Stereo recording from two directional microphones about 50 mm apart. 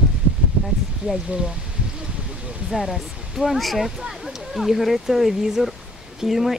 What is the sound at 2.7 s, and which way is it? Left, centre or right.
Speech, centre.